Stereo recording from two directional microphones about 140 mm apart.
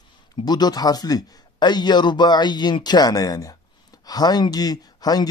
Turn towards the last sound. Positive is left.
turn(degrees=30)  # may be behind; listen again after turning